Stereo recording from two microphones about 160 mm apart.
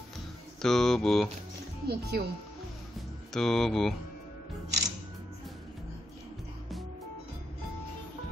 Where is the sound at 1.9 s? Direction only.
80° right.